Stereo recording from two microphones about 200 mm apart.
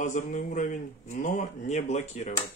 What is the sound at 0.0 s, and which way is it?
Speech, 40° left (ahead or behind).